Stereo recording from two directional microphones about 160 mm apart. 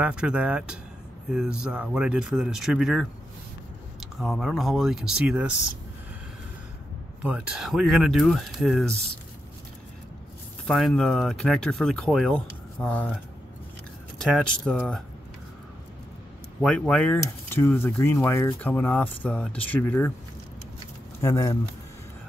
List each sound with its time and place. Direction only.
0.0 s speech: 5° right (ahead or behind)
4.2 s speech: centre (ahead or behind)
7.2 s speech: 10° right (ahead or behind)
10.7 s speech: 5° left (ahead or behind)
14.2 s speech: 5° left (ahead or behind)
16.6 s speech: 5° left (ahead or behind)
21.2 s speech: 20° left (ahead or behind)